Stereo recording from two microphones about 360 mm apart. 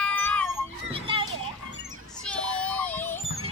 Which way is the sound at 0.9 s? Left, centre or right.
Centre.